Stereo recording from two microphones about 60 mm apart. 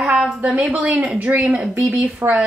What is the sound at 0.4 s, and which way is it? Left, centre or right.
Speech, right.